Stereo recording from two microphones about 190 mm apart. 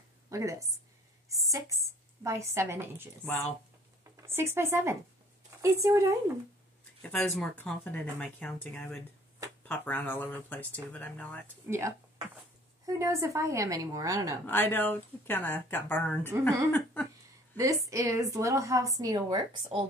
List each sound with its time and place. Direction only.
0.3 s a woman's voice: 15° right (ahead or behind)
7.0 s speech: 5° left (ahead or behind)
11.7 s a woman's voice: 10° right (ahead or behind)
12.8 s a woman's voice: 15° right (ahead or behind)
14.4 s speech: 10° left (ahead or behind)
16.7 s a sound: 10° left (ahead or behind)
17.6 s a woman's voice: 15° right (ahead or behind)